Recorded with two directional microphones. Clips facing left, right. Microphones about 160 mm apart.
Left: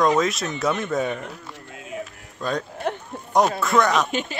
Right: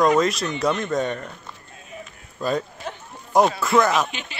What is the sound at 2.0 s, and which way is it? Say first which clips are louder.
Music: right 4 dB; 5° right (ahead or behind).